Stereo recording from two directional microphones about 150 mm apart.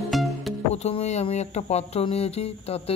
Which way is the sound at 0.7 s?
45° left (ahead or behind).